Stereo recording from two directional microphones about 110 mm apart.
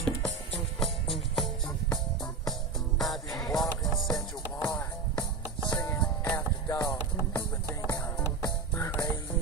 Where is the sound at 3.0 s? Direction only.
Centre (ahead or behind).